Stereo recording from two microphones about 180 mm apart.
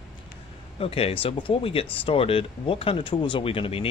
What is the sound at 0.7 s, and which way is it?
Speech, 35° left (ahead or behind).